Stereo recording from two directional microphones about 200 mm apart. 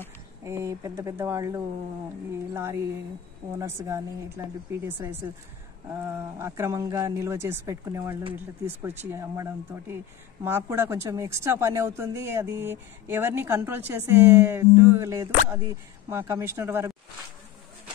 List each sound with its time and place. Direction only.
0.4 s speech: 15° right (ahead or behind)